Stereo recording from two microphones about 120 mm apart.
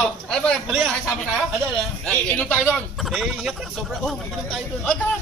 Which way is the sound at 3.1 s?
5° right (ahead or behind).